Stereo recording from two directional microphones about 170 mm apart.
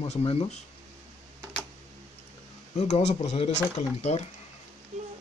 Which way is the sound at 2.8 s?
40° left (ahead or behind).